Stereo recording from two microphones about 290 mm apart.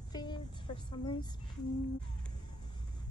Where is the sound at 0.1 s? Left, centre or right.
Centre.